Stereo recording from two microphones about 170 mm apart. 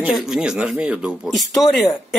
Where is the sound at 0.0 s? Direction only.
Centre (ahead or behind).